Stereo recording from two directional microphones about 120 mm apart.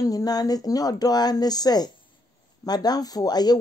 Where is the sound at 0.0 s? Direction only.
30° left (ahead or behind).